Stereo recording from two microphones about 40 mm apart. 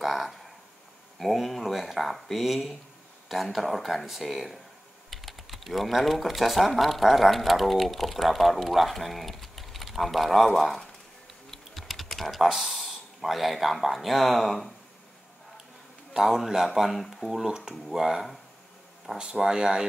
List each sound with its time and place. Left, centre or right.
0.0 s a sound: centre
1.2 s speech: centre
11.5 s typing: centre
12.4 s speech: centre
16.1 s speech: centre
17.5 s speech: centre
19.3 s speech: centre